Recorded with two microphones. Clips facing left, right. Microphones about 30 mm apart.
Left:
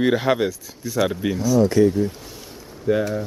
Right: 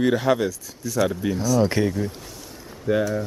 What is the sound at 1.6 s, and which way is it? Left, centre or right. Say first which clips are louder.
Speech: left 8 dB; right.